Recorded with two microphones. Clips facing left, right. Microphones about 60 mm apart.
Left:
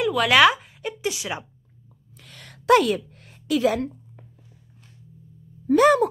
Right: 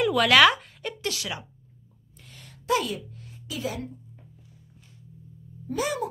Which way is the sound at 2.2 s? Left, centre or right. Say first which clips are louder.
Left 9 dB; left.